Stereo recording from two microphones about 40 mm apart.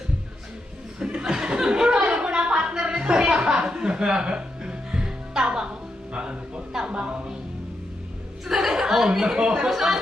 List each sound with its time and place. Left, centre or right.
0.9 s a sound: right
6.9 s music: right
8.5 s speech: centre; by 9.7 s right
9.7 s speech: centre